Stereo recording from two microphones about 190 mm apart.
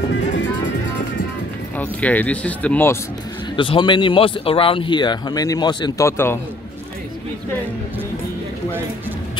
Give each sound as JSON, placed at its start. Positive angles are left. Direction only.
{"t": 1.8, "sound": "speech", "side_deg": 10}
{"t": 3.5, "sound": "speech", "side_deg": 25}